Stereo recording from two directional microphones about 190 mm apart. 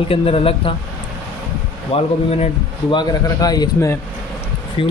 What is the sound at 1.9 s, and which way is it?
Speech, 30° left (ahead or behind).